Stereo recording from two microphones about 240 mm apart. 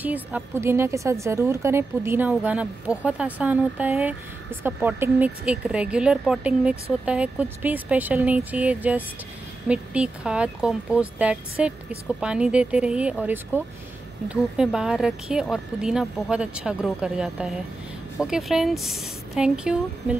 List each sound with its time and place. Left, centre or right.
0.0 s a woman's voice: centre